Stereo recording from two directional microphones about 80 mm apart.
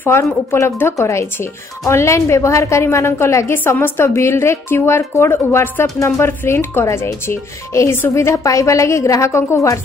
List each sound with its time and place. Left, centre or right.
0.0 s speech: left